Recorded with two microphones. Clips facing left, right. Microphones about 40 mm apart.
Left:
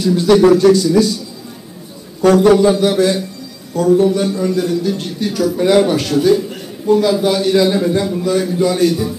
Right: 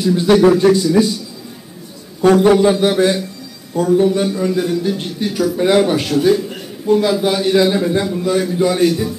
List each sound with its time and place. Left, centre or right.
0.0 s a man's voice: centre
2.2 s a man's voice: right